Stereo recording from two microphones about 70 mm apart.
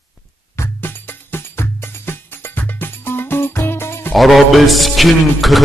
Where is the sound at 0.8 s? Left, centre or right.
Left.